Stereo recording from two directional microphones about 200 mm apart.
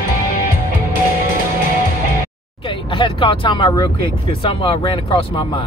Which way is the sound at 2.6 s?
25° left (ahead or behind).